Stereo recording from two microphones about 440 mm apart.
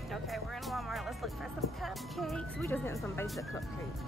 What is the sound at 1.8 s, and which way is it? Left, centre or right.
Speech, centre.